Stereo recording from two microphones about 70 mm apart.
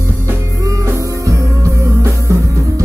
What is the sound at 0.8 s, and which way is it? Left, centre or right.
Music, right.